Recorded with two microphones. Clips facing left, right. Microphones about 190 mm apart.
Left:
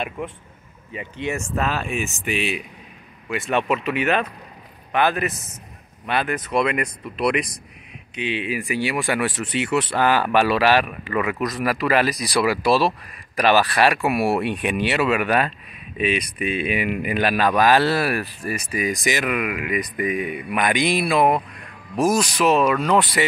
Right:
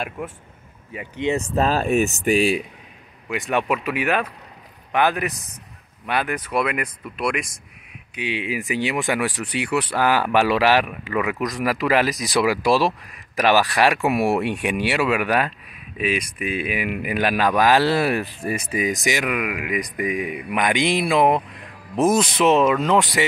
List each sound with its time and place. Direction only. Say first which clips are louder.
0.9 s speech: right 4 dB; 15° right (ahead or behind)
1.6 s speech: right 7 dB; 35° right (ahead or behind)
3.3 s speech: even; 15° right (ahead or behind)
8.2 s speech: left 1 dB; 15° right (ahead or behind)